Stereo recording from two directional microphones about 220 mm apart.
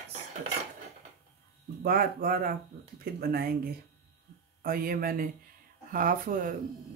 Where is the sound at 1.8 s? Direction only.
40° right (ahead or behind).